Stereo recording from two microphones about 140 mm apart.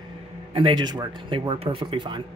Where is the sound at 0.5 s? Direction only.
35° right (ahead or behind).